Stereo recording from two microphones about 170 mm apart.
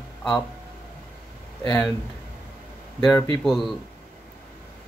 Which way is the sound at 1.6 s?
20° left (ahead or behind).